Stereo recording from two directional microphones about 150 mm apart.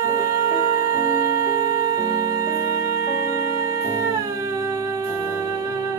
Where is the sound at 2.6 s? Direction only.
80° left.